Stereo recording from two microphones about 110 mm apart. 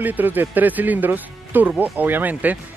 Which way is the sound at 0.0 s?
15° right (ahead or behind).